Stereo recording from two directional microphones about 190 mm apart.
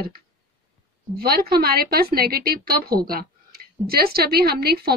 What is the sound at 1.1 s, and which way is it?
A woman's voice, 55° right (ahead or behind).